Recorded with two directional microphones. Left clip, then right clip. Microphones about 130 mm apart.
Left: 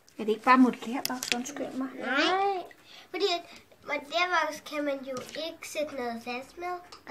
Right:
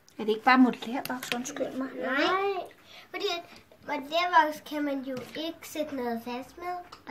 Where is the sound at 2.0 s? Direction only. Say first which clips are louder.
Even; 30° left (ahead or behind).